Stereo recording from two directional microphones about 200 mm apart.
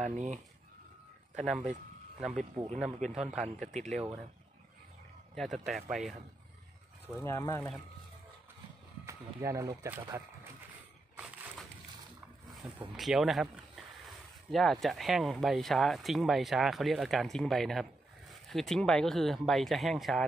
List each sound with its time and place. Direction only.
0.0 s speech: 35° right (ahead or behind)
1.3 s speech: centre (ahead or behind)
5.3 s a man's voice: centre (ahead or behind)
7.2 s speech: 15° left (ahead or behind)
9.0 s speech: 15° right (ahead or behind)
12.9 s speech: centre (ahead or behind)